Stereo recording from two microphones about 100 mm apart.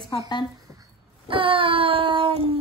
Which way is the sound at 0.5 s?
35° right (ahead or behind).